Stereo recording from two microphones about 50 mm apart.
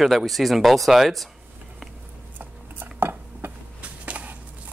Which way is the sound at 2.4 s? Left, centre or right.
Right.